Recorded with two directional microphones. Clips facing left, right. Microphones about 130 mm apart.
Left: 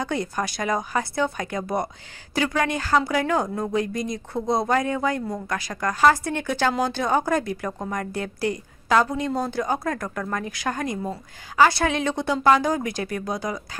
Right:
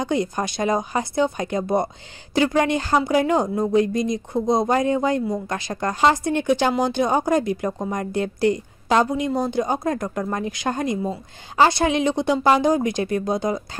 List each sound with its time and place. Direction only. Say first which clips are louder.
0.0 s speech: right 4 dB; 20° right (ahead or behind)